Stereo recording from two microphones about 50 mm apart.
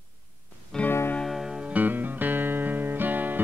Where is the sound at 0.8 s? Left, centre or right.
Left.